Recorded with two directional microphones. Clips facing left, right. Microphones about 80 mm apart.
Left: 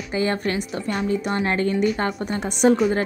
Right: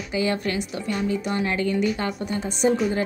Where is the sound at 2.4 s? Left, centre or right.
Left.